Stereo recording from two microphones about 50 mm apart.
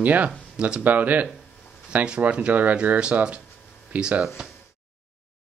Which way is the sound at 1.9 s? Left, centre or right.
Right.